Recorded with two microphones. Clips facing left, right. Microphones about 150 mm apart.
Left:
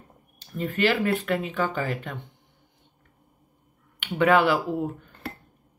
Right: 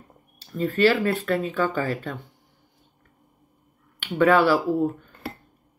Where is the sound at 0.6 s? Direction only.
15° left (ahead or behind).